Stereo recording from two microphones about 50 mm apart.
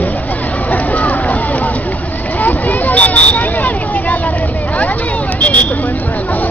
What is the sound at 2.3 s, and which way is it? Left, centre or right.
Vehicle, left.